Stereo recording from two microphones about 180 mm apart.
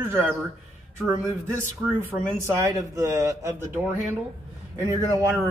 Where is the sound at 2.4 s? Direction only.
15° right (ahead or behind).